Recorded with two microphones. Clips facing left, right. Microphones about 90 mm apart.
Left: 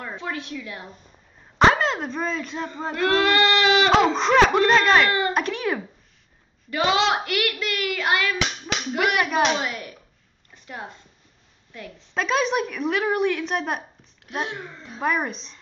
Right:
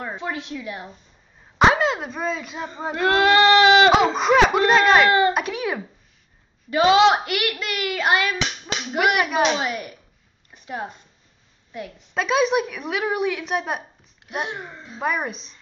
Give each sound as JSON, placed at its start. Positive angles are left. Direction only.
{"t": 0.0, "sound": "speech", "side_deg": -20}
{"t": 1.6, "sound": "speech", "side_deg": -5}
{"t": 3.9, "sound": "a woman's voice", "side_deg": -5}
{"t": 6.7, "sound": "speech", "side_deg": -20}
{"t": 8.7, "sound": "clapping", "side_deg": -5}
{"t": 9.2, "sound": "a woman's voice", "side_deg": 0}
{"t": 9.6, "sound": "speech", "side_deg": -20}
{"t": 10.5, "sound": "a sound", "side_deg": -15}
{"t": 11.7, "sound": "speech", "side_deg": -15}
{"t": 12.1, "sound": "a woman's voice", "side_deg": -5}
{"t": 14.3, "sound": "speech", "side_deg": -15}
{"t": 15.0, "sound": "a woman's voice", "side_deg": 0}